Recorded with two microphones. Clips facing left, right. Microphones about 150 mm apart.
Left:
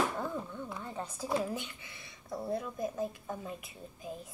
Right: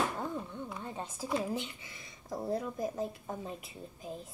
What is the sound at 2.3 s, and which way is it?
A woman's voice, 35° right (ahead or behind).